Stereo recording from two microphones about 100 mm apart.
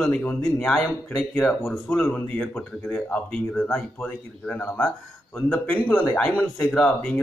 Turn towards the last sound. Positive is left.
turn(degrees=15)  # may be behind; listen again after turning